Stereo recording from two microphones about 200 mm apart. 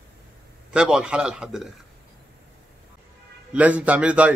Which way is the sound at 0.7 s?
5° right (ahead or behind).